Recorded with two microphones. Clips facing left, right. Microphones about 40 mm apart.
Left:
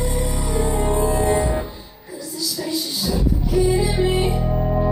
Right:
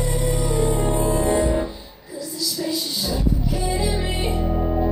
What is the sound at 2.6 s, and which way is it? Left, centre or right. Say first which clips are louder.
Music: even; left.